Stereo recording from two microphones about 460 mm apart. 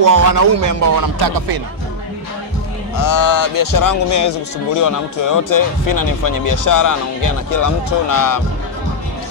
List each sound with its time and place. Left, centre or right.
0.0 s speech: right
3.0 s speech: left